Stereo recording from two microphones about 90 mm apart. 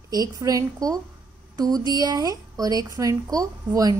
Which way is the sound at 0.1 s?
45° right (ahead or behind).